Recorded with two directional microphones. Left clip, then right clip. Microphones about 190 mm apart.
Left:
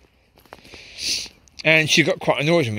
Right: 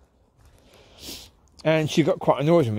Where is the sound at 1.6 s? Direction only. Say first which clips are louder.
Left 5 dB; 15° right (ahead or behind).